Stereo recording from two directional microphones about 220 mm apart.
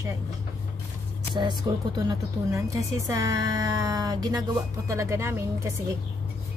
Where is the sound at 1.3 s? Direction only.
20° right (ahead or behind).